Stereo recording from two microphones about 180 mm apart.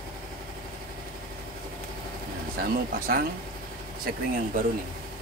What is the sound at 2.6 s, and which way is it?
Speech, 55° right (ahead or behind).